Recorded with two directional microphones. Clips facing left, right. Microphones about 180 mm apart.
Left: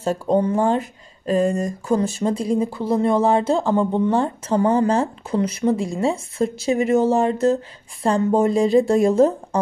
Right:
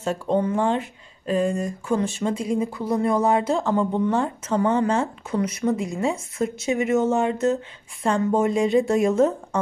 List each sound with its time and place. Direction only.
0.0 s speech: 40° left (ahead or behind)